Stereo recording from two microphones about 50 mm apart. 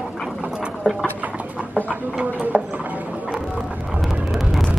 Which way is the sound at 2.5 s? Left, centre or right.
Centre.